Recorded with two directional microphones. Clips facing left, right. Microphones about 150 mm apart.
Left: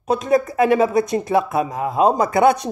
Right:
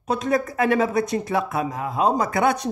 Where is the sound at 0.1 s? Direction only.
15° left (ahead or behind).